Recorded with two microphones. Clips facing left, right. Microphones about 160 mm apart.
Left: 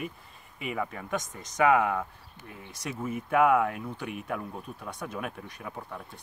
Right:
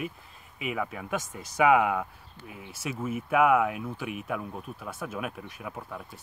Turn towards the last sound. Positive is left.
turn(degrees=-5)  # may be behind; listen again after turning